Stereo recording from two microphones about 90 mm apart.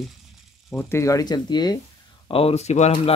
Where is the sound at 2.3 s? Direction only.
90° left.